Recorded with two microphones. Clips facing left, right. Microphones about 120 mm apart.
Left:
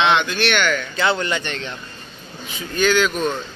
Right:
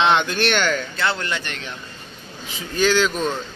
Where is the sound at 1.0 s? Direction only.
Centre (ahead or behind).